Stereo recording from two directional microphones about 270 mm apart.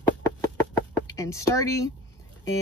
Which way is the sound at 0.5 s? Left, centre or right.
Centre.